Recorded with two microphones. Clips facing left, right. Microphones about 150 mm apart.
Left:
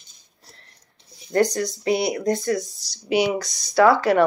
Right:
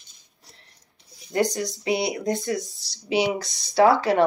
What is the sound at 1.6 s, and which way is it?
Speech, 20° right (ahead or behind).